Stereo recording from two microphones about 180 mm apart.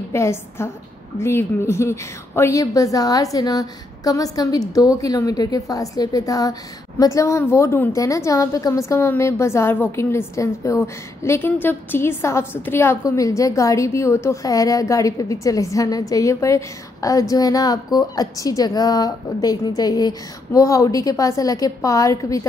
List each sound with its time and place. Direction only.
0.1 s a woman's voice: 15° left (ahead or behind)